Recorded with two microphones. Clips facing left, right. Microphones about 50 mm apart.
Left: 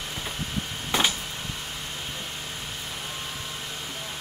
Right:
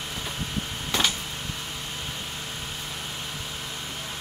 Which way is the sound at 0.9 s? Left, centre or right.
Centre.